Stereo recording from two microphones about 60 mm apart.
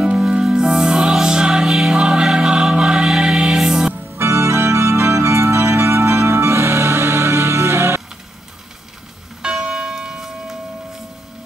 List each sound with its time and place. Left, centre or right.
0.0 s music: centre
4.2 s organ: right
9.4 s church bell: centre